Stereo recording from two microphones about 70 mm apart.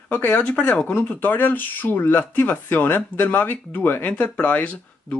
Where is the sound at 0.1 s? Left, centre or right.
Left.